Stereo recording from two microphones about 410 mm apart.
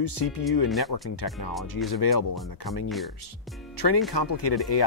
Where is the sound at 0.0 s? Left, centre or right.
Left.